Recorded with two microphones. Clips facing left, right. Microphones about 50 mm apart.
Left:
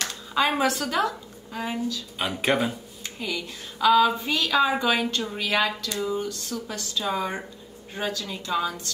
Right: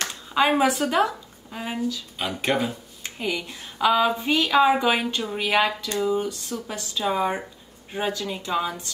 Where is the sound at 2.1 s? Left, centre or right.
Centre.